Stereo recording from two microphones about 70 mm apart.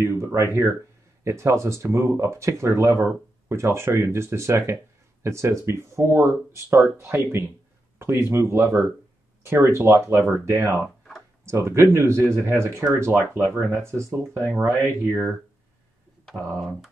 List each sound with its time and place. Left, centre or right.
0.0 s speech: right